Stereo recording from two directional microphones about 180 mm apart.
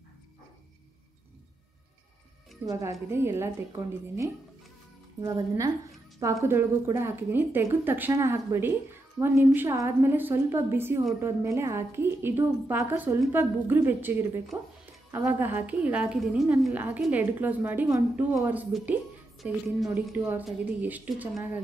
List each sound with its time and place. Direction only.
2.6 s a woman's voice: 15° right (ahead or behind)